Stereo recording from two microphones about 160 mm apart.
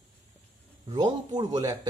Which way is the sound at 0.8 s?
25° right (ahead or behind).